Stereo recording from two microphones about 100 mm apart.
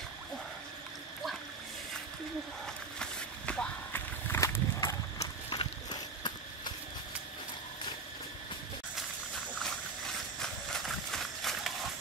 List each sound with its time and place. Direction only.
2.6 s a sound: 10° left (ahead or behind)
3.9 s walk: 25° left (ahead or behind)
4.7 s horse: 35° left (ahead or behind)
5.5 s ratchet: 50° left (ahead or behind)
9.6 s horse: 5° left (ahead or behind)